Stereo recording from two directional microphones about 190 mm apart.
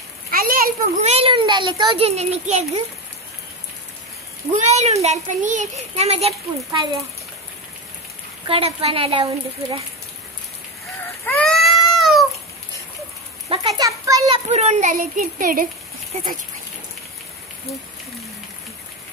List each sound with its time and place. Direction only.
0.3 s a sound: 50° right (ahead or behind)
1.0 s a child's voice: 30° right (ahead or behind)
4.5 s a child's voice: 35° right (ahead or behind)
8.5 s speech: 30° right (ahead or behind)
11.2 s a sound: 5° left (ahead or behind)
13.5 s a child's voice: 30° right (ahead or behind)
13.8 s children playing: 15° right (ahead or behind)
14.3 s a child's voice: 35° right (ahead or behind)